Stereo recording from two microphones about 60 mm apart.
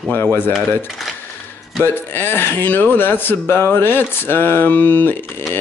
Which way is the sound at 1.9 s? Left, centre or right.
Left.